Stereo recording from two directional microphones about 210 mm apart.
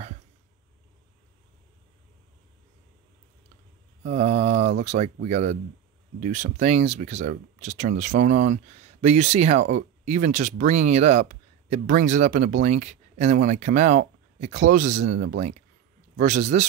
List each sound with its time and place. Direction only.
4.0 s speech: 35° right (ahead or behind)